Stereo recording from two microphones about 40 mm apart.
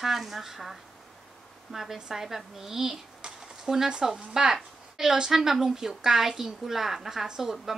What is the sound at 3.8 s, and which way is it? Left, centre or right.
A woman's voice, right.